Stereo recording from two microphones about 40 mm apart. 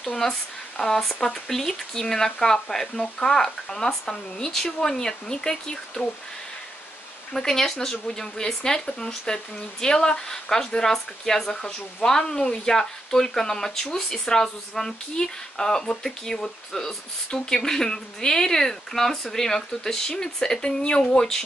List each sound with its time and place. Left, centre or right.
0.2 s speech: centre
7.3 s speech: centre